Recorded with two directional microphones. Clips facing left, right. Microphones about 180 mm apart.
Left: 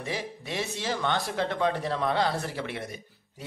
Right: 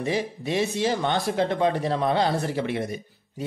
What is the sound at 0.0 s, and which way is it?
Speech, 20° right (ahead or behind).